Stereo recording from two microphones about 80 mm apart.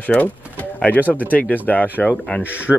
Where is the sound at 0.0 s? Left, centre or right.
Centre.